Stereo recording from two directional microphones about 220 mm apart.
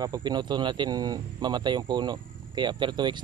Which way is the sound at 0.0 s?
20° right (ahead or behind).